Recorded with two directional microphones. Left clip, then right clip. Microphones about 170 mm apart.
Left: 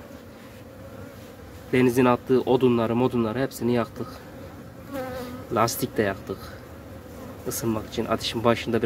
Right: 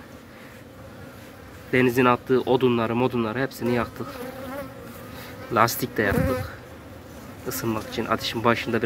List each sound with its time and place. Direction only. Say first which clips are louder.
1.7 s speech: right 1 dB; 15° left (ahead or behind)
5.5 s speech: right 3 dB; 10° left (ahead or behind)